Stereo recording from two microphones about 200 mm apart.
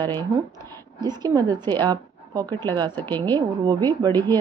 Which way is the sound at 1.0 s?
20° right (ahead or behind).